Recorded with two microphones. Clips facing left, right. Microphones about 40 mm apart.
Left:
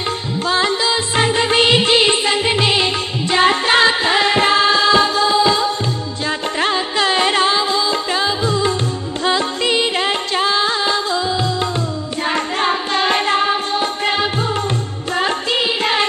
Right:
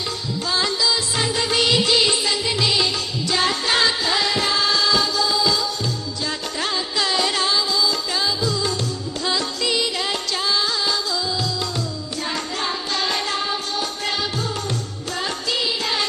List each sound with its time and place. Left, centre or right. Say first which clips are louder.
0.5 s music: left 5 dB; left
12.3 s music: left 8 dB; left